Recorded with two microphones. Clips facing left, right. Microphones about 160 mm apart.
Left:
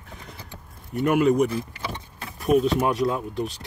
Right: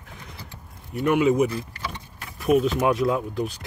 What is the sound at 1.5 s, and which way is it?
Vehicle, 25° left (ahead or behind).